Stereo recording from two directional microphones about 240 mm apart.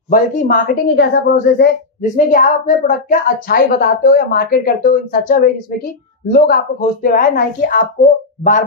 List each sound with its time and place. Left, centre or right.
0.1 s a woman's voice: left